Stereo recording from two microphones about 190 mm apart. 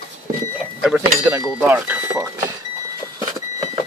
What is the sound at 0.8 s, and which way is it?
Speech, centre (ahead or behind).